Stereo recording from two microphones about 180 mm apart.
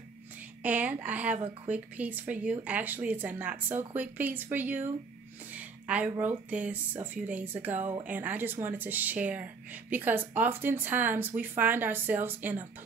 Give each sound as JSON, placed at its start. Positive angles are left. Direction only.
{"t": 0.6, "sound": "speech", "side_deg": -10}